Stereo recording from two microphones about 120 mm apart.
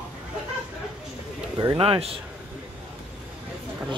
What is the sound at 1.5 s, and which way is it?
Speech, 40° right (ahead or behind).